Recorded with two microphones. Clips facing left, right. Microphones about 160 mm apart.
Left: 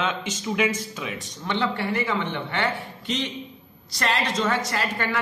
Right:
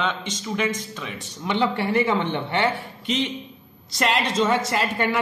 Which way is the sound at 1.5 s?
20° right (ahead or behind).